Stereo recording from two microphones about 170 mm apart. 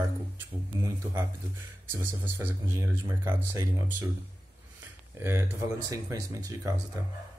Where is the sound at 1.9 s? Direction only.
15° right (ahead or behind).